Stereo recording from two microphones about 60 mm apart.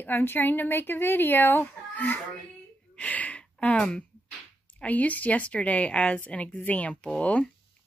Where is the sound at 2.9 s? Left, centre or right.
Left.